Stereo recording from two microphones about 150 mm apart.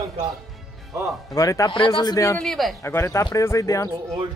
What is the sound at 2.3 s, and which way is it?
Speech, centre (ahead or behind).